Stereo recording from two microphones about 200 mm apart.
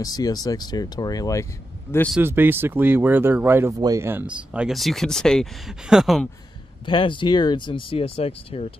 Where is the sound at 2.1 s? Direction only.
10° right (ahead or behind).